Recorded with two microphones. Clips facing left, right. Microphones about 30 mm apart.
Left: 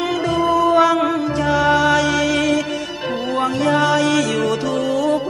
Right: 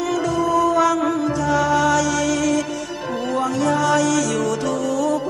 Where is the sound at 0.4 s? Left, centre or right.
Left.